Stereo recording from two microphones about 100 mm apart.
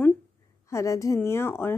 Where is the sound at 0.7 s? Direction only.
30° left (ahead or behind).